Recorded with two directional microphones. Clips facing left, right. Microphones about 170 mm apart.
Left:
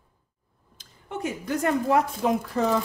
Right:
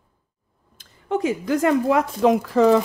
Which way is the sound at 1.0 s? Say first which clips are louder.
Right 8 dB; 90° right.